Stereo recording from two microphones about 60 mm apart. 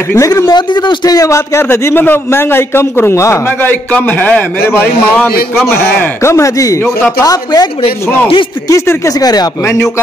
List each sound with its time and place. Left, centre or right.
0.3 s speech: left
1.3 s a man's voice: left
3.9 s a man's voice: left
6.2 s speech: left
7.2 s speech: left
8.6 s speech: left
9.2 s speech: left